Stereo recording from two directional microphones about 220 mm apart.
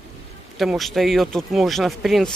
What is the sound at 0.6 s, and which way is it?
Speech, centre (ahead or behind).